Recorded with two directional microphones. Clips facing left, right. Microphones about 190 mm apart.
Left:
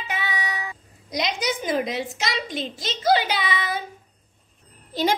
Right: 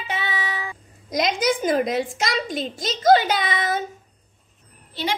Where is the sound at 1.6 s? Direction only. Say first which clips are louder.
Right 4 dB; 50° right (ahead or behind).